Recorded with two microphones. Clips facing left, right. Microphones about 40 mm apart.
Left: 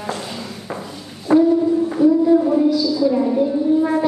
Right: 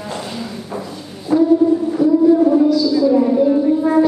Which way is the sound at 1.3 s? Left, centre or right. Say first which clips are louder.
Left 1 dB; left.